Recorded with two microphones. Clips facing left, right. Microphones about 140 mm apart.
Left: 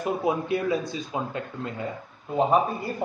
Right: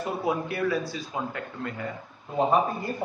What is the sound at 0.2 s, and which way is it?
Speech, 20° left (ahead or behind).